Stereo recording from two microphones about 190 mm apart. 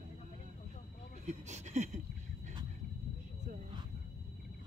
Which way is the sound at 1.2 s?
40° right (ahead or behind).